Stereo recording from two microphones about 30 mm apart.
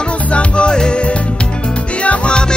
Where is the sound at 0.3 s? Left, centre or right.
Left.